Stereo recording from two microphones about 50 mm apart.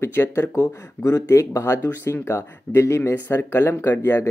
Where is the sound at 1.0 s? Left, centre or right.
Left.